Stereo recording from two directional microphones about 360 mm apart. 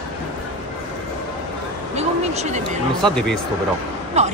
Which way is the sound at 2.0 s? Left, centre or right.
Centre.